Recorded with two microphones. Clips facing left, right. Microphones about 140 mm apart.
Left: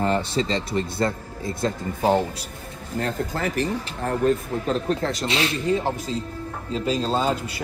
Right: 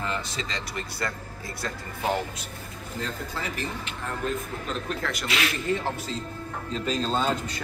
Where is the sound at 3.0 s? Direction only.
50° left (ahead or behind); by 5.6 s 30° left (ahead or behind).